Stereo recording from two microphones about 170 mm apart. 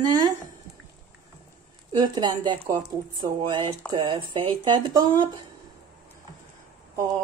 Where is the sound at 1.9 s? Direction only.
25° right (ahead or behind).